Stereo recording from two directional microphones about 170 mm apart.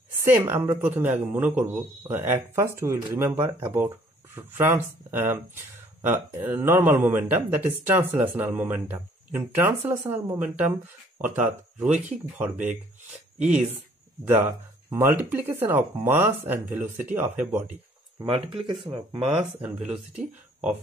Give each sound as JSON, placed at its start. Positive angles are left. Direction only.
{"t": 0.1, "sound": "speech", "side_deg": -15}
{"t": 4.4, "sound": "speech", "side_deg": -10}
{"t": 13.4, "sound": "speech", "side_deg": -5}
{"t": 18.2, "sound": "speech", "side_deg": -30}
{"t": 19.6, "sound": "speech", "side_deg": -5}